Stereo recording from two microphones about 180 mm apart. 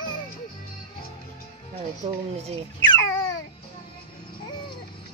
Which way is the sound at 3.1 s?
20° left (ahead or behind).